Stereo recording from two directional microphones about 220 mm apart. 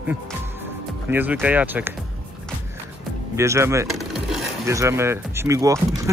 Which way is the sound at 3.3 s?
10° right (ahead or behind).